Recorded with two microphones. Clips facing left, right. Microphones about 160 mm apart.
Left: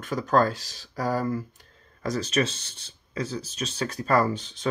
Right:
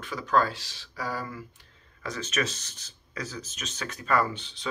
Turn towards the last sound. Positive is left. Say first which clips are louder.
# left 5 dB
turn(degrees=45)  # may be behind; listen again after turning